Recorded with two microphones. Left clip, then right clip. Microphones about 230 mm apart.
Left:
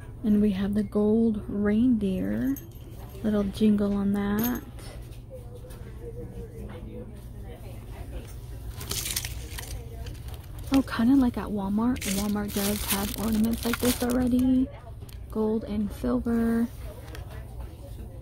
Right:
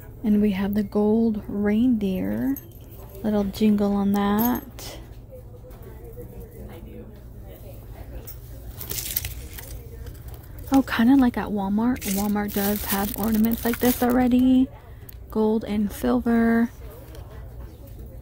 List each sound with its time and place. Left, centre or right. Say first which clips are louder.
0.2 s speech: right 3 dB; centre
8.8 s a sound: left 1 dB; centre
10.7 s speech: right 4 dB; centre
14.0 s speech: right 8 dB; centre